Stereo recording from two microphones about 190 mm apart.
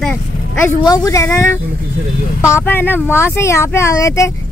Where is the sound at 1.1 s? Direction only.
15° left (ahead or behind).